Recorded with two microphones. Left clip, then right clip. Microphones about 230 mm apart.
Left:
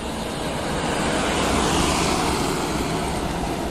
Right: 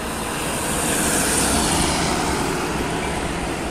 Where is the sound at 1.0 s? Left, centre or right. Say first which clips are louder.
Even; right.